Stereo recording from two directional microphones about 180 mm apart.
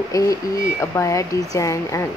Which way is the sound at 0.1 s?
15° left (ahead or behind).